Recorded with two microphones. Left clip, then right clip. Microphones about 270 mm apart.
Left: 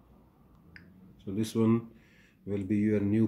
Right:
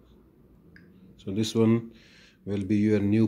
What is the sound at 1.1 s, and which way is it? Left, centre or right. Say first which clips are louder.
Speech: right 5 dB; centre.